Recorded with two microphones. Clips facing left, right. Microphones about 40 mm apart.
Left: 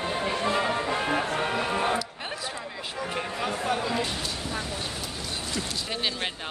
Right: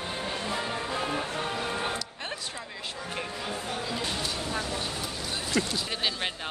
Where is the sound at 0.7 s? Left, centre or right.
Left.